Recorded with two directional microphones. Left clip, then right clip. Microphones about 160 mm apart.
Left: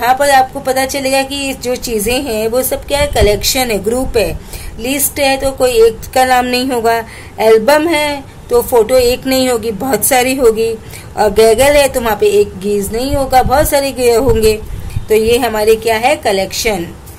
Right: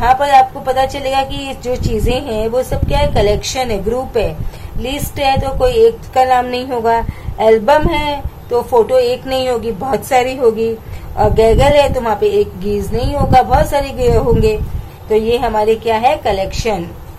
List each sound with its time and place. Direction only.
0.0 s a woman's voice: 35° left (ahead or behind)